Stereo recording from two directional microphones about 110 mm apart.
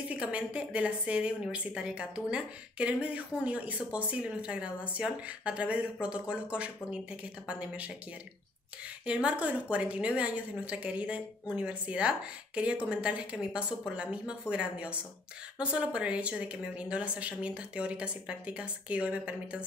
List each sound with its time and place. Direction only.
0.1 s speech: 10° right (ahead or behind)
9.0 s speech: 10° right (ahead or behind)